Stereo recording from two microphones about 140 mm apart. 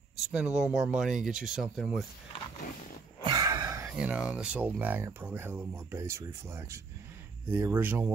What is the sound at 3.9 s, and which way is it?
Speech, 5° right (ahead or behind).